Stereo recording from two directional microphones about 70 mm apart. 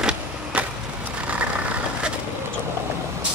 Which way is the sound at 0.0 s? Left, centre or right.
Centre.